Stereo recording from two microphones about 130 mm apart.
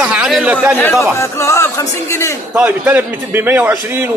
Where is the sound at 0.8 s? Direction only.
20° left (ahead or behind).